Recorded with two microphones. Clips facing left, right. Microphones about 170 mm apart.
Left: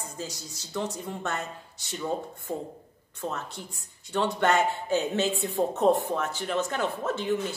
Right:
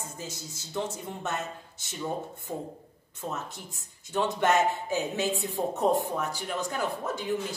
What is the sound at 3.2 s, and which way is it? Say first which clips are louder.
A man's voice: left 2 dB; 20° right (ahead or behind).